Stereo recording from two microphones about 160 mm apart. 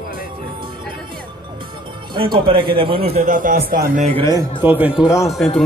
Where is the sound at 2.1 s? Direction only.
30° right (ahead or behind).